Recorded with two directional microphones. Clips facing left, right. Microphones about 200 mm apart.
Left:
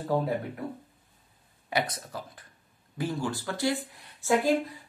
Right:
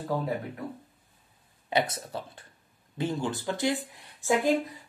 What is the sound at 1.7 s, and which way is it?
Speech, 25° right (ahead or behind).